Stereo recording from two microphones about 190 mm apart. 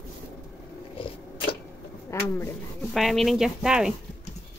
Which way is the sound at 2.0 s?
15° left (ahead or behind).